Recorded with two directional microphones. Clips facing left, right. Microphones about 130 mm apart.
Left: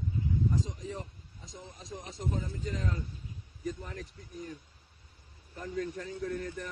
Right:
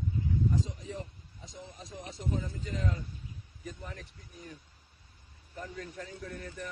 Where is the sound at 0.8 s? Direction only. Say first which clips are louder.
Left 1 dB; 35° left (ahead or behind).